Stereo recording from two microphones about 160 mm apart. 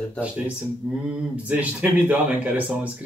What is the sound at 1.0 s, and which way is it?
Speech, 10° right (ahead or behind).